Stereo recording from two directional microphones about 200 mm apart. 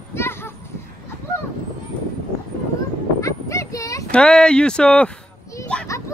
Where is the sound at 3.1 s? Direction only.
15° left (ahead or behind).